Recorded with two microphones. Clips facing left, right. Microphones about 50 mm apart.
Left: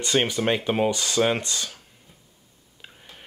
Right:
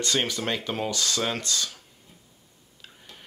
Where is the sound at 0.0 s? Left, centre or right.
Left.